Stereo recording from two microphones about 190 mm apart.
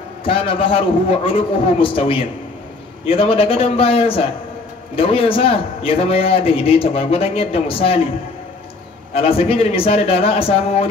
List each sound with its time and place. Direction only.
0.2 s a man's voice: 30° left (ahead or behind)
9.1 s a man's voice: 30° left (ahead or behind)